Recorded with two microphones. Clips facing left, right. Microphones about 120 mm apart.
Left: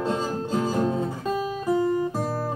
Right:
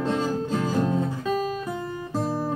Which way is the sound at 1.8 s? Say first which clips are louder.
Left 10 dB; 30° left (ahead or behind).